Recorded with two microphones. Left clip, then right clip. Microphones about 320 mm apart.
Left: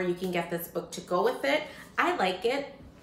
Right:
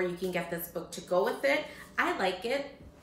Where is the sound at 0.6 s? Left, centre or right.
Centre.